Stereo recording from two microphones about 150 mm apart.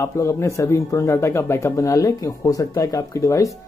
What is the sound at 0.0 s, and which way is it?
Speech, 20° left (ahead or behind).